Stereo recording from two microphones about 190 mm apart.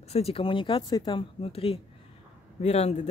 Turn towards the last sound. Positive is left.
turn(degrees=35)  # may be behind; listen again after turning